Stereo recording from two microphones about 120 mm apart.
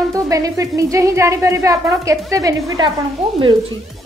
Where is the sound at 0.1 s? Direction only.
30° right (ahead or behind).